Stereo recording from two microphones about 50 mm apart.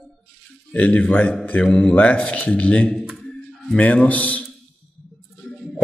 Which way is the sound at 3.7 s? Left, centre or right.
Left.